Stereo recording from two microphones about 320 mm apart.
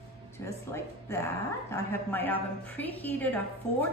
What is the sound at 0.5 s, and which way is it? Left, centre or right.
A woman's voice, centre.